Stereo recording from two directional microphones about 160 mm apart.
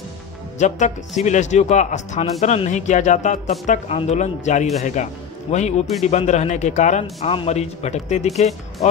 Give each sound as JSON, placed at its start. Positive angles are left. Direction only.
{"t": 0.6, "sound": "a man's voice", "side_deg": 50}